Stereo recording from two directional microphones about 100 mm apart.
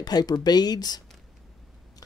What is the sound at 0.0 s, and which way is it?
Speech, 40° left (ahead or behind).